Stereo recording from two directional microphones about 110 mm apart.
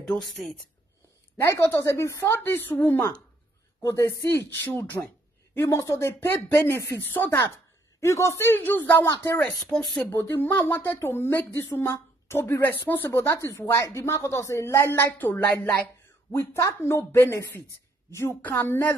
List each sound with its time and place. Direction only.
0.0 s speech: 5° left (ahead or behind)
1.4 s speech: 25° left (ahead or behind)
9.6 s speech: 5° left (ahead or behind)
10.0 s a woman's voice: 20° left (ahead or behind)